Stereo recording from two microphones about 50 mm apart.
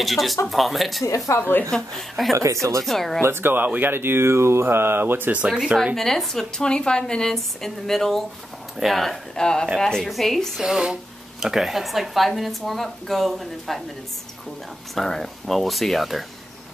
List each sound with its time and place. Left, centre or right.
0.0 s speech: centre
1.3 s speech: left
1.8 s speech: centre
2.3 s speech: right
2.8 s speech: centre
3.2 s speech: right
3.5 s speech: right
5.9 s speech: centre
10.6 s speech: centre
15.0 s speech: centre